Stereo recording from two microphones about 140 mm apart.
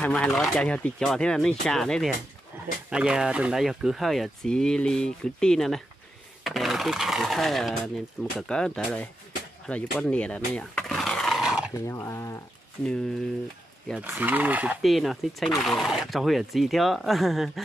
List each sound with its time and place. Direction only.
0.0 s speech: 10° left (ahead or behind)
9.7 s a sound: 5° left (ahead or behind)
11.7 s speech: 20° left (ahead or behind)
13.9 s speech: 15° right (ahead or behind)
14.8 s speech: centre (ahead or behind)